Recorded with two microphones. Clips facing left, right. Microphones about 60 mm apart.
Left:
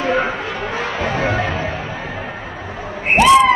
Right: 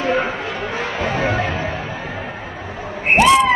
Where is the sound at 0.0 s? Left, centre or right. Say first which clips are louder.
Left 1 dB; centre.